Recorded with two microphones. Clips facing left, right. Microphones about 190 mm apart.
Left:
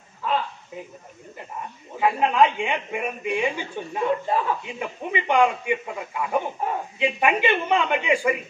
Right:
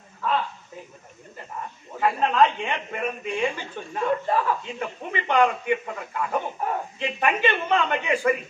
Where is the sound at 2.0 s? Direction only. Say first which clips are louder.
Left 1 dB; 10° left (ahead or behind).